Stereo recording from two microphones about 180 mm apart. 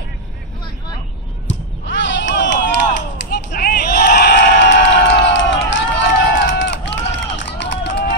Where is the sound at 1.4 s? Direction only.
85° left.